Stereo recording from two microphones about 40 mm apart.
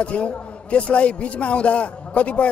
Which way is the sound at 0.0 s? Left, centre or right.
Left.